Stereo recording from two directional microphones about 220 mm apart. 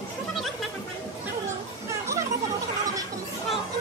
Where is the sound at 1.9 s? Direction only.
15° right (ahead or behind).